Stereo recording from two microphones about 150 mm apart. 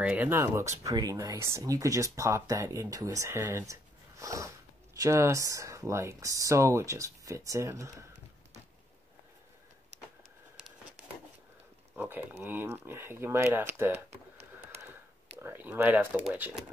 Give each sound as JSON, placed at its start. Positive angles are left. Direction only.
{"t": 0.0, "sound": "speech", "side_deg": -10}
{"t": 12.0, "sound": "speech", "side_deg": -10}
{"t": 15.3, "sound": "speech", "side_deg": -15}